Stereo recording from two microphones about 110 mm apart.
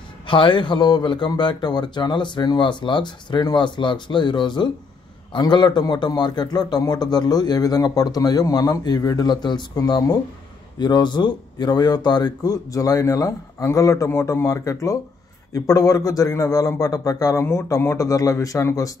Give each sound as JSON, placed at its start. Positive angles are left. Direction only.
{"t": 0.3, "sound": "a man's voice", "side_deg": 50}